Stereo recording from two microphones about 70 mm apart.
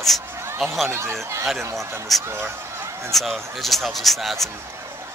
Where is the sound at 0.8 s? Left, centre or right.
Right.